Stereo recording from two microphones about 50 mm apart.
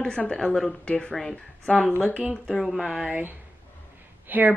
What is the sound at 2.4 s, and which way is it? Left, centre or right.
Speech, centre.